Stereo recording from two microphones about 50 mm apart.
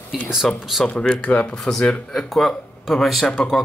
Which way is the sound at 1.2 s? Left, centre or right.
Left.